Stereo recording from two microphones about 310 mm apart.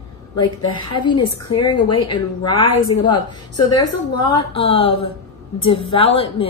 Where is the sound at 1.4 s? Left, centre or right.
Left.